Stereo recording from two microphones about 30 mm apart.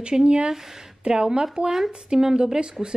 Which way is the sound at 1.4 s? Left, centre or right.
Centre.